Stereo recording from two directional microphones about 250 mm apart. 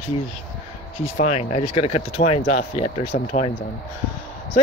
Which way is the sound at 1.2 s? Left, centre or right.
Left.